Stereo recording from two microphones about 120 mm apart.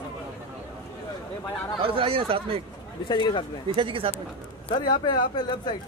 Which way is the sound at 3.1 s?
40° left (ahead or behind).